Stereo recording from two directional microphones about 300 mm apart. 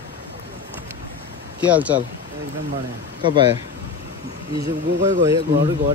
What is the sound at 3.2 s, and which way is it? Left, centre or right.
Speech, centre.